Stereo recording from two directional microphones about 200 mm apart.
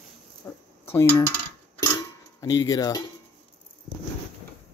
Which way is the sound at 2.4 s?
20° left (ahead or behind).